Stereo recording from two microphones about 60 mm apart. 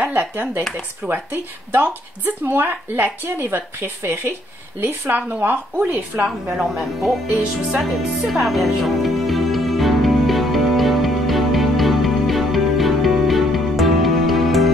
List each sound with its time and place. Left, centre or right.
0.0 s speech: right
6.5 s speech: centre
7.8 s music: centre